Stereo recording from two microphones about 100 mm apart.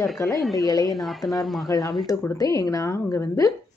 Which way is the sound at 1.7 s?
35° left (ahead or behind).